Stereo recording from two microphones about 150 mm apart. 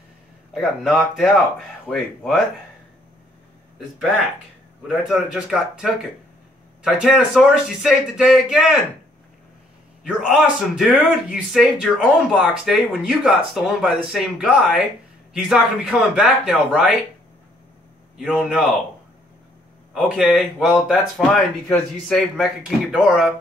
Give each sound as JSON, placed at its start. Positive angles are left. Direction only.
{"t": 0.6, "sound": "speech", "side_deg": 0}
{"t": 4.8, "sound": "speech", "side_deg": -5}
{"t": 10.0, "sound": "speech", "side_deg": -5}
{"t": 18.1, "sound": "a man's voice", "side_deg": -5}
{"t": 19.9, "sound": "speech", "side_deg": 0}